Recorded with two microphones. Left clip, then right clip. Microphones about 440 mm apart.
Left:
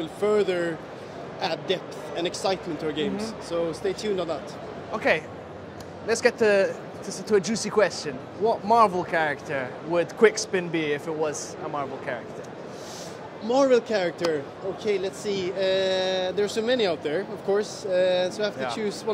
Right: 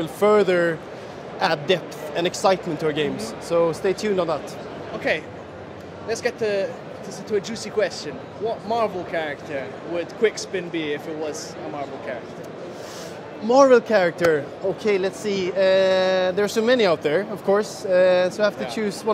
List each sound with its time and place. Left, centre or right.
0.0 s speech: right
6.0 s speech: left
13.5 s a man's voice: right